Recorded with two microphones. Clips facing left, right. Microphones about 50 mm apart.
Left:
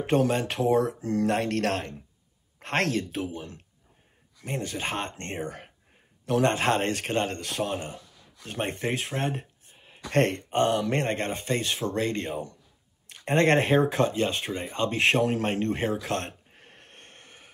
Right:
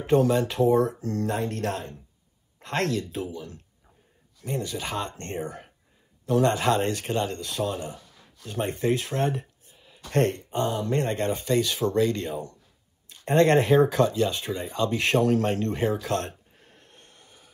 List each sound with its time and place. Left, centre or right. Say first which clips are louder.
0.0 s speech: right 3 dB; left
1.2 s speech: left 3 dB; left
2.6 s speech: even; left